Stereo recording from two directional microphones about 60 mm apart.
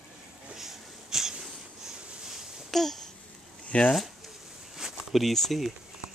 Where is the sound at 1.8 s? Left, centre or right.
Centre.